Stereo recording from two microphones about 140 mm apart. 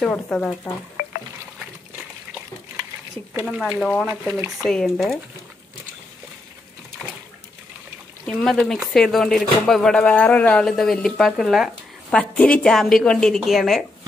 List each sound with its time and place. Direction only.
0.0 s speech: 5° left (ahead or behind)
1.0 s a sound: 90° left
3.4 s speech: centre (ahead or behind)
8.3 s speech: 5° left (ahead or behind)